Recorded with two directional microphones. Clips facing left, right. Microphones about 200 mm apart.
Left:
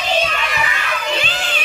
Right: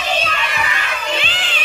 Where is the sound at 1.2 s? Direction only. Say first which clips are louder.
Left 2 dB; 45° left (ahead or behind).